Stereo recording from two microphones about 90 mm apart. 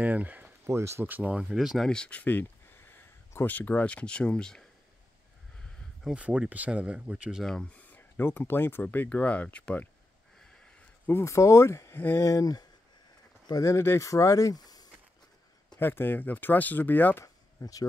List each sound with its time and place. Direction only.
0.0 s speech: 15° right (ahead or behind)
0.7 s speech: 30° right (ahead or behind)
1.4 s speech: 5° right (ahead or behind)
1.9 s speech: 10° left (ahead or behind)
6.1 s speech: 15° right (ahead or behind)
7.4 s speech: 5° left (ahead or behind)
7.9 s speech: 25° left (ahead or behind)
10.4 s sniff: 10° left (ahead or behind)
11.1 s speech: 30° left (ahead or behind)
15.8 s speech: 25° left (ahead or behind)
17.2 s a sound: 40° left (ahead or behind)